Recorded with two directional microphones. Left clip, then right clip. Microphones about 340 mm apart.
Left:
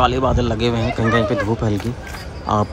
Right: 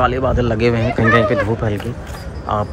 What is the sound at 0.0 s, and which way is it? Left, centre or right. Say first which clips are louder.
Speech: right 1 dB; centre.